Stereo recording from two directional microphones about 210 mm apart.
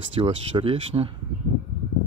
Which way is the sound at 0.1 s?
25° right (ahead or behind).